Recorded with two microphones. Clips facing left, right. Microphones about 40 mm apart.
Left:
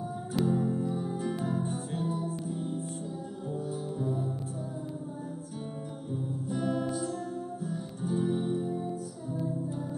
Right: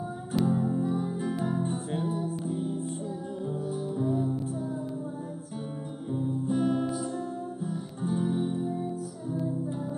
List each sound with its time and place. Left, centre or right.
0.4 s music: centre
1.6 s music: right
4.0 s music: centre
6.5 s music: centre